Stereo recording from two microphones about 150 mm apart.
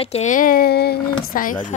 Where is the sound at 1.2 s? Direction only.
65° left (ahead or behind).